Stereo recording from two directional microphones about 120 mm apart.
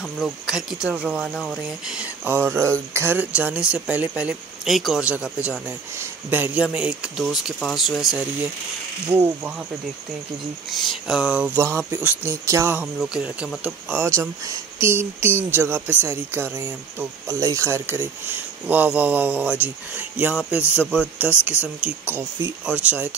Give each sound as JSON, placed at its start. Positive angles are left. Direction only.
{"t": 0.5, "sound": "speech", "side_deg": -5}
{"t": 2.2, "sound": "speech", "side_deg": -20}
{"t": 9.1, "sound": "speech", "side_deg": -20}
{"t": 10.7, "sound": "speech", "side_deg": 0}
{"t": 14.0, "sound": "speech", "side_deg": -25}